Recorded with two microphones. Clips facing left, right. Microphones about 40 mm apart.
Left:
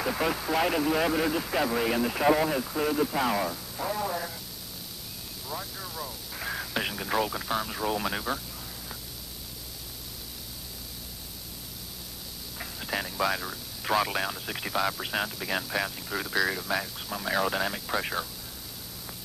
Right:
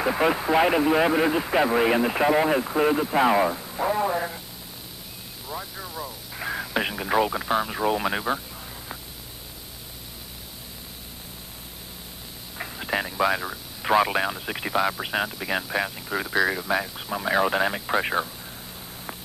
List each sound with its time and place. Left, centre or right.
0.0 s speech: right
3.1 s radio: right
5.5 s radio: centre
12.5 s speech: right